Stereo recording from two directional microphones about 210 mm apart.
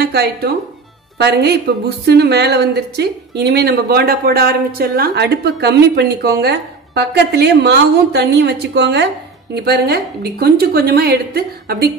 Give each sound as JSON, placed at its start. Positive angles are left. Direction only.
{"t": 0.0, "sound": "a woman's voice", "side_deg": -50}